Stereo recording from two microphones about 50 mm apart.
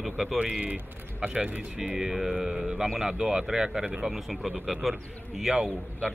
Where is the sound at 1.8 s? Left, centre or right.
Centre.